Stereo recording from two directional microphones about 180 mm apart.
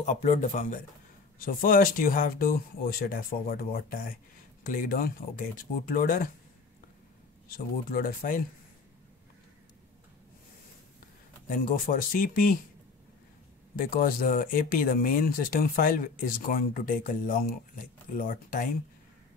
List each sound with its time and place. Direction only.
0.0 s speech: 40° left (ahead or behind)
7.5 s speech: 55° left (ahead or behind)
11.4 s speech: 50° left (ahead or behind)
13.7 s speech: 50° left (ahead or behind)